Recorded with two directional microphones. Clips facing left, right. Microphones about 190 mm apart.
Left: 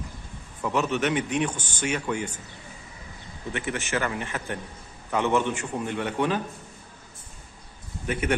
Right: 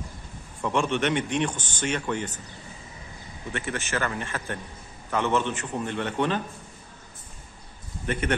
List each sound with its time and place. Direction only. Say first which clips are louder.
0.6 s a man's voice: even; 5° left (ahead or behind)
3.5 s a man's voice: left 1 dB; 15° left (ahead or behind)